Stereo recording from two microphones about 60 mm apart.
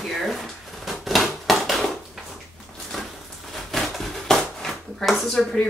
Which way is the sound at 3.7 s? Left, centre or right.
Centre.